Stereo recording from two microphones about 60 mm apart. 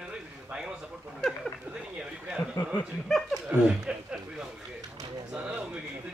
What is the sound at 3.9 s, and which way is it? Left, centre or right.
Speech, centre.